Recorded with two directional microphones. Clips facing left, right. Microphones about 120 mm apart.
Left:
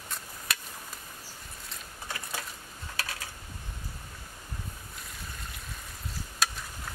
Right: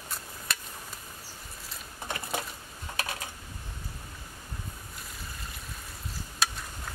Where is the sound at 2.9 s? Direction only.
20° right (ahead or behind).